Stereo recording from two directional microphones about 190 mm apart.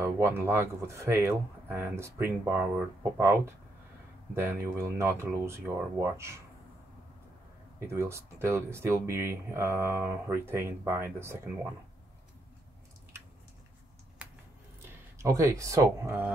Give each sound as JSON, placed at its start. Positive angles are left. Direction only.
{"t": 0.0, "sound": "speech", "side_deg": -15}
{"t": 7.8, "sound": "speech", "side_deg": -15}
{"t": 14.2, "sound": "a sound", "side_deg": -5}
{"t": 14.9, "sound": "speech", "side_deg": -15}